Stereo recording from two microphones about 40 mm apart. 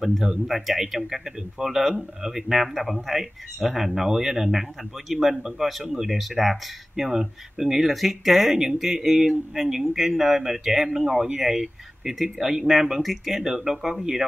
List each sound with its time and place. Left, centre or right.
0.0 s speech: centre